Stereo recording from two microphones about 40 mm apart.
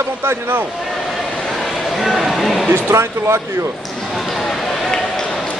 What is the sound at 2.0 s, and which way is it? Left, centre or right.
Speech, centre.